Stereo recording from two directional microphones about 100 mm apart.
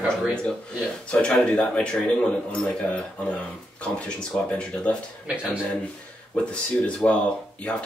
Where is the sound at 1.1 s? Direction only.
10° left (ahead or behind).